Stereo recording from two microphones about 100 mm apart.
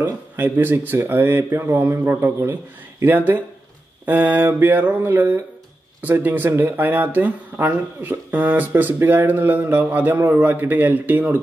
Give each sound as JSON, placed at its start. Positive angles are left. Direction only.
{"t": 0.0, "sound": "speech", "side_deg": -20}